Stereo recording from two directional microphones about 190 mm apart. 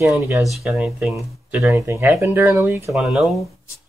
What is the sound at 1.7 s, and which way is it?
Speech, 15° right (ahead or behind).